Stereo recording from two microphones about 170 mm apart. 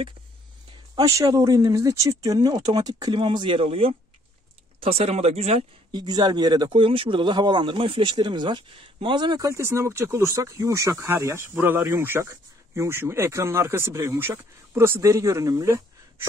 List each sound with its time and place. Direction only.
0.9 s speech: 20° right (ahead or behind)